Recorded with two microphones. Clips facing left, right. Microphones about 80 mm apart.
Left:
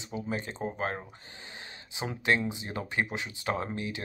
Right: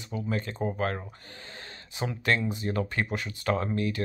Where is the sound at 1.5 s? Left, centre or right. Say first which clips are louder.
Even; centre.